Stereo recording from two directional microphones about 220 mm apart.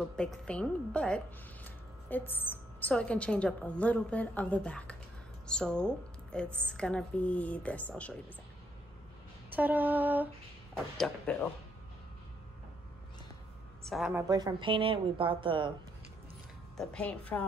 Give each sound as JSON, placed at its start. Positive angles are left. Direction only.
{"t": 0.1, "sound": "a woman's voice", "side_deg": 5}
{"t": 9.5, "sound": "a sound", "side_deg": -10}
{"t": 11.3, "sound": "a woman's voice", "side_deg": 5}
{"t": 13.8, "sound": "a woman's voice", "side_deg": 0}
{"t": 14.1, "sound": "speech", "side_deg": -15}
{"t": 16.7, "sound": "a woman's voice", "side_deg": 5}